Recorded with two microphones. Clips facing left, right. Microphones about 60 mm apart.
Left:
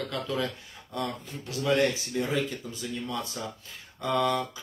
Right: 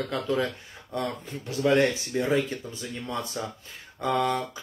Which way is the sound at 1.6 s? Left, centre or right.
Right.